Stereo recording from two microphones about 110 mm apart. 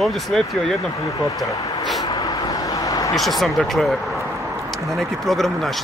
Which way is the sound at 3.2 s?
Centre (ahead or behind).